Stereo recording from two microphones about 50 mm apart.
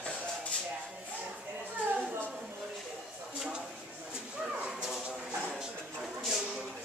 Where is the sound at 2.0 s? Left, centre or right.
Right.